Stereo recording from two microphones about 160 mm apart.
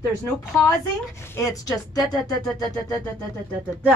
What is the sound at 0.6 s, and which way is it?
Speech, 20° left (ahead or behind).